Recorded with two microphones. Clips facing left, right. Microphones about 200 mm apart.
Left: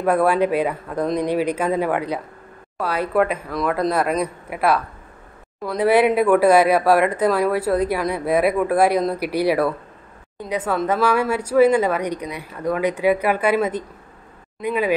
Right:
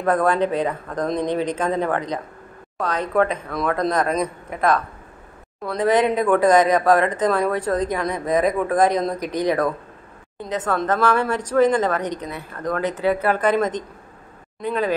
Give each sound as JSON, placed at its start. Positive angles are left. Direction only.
{"t": 0.0, "sound": "speech", "side_deg": 10}